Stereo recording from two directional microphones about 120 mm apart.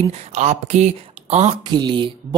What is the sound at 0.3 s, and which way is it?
Speech, 80° right.